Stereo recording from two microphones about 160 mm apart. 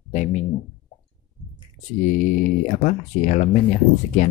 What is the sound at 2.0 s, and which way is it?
Speech, 55° left (ahead or behind).